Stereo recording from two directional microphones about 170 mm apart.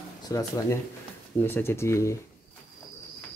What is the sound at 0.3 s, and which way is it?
Speech, 20° left (ahead or behind).